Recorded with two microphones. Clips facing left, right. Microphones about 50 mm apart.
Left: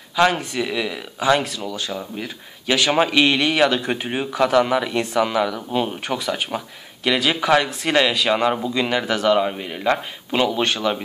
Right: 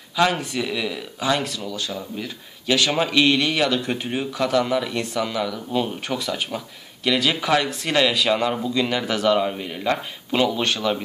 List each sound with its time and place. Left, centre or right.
0.3 s speech: centre
1.9 s speech: left
5.5 s speech: left
8.9 s speech: centre